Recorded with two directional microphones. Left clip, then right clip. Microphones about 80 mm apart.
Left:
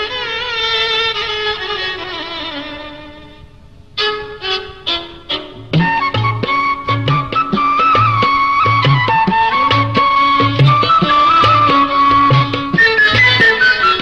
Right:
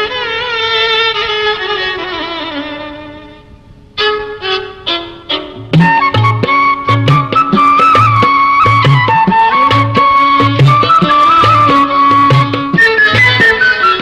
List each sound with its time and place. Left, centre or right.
0.0 s wind instrument: left
0.7 s music: left
3.9 s music: left
6.3 s music: left
6.6 s music: left
7.2 s music: left
8.8 s music: left
9.6 s music: left
9.8 s music: left
10.5 s music: left
11.6 s music: left
13.2 s music: left
13.6 s music: left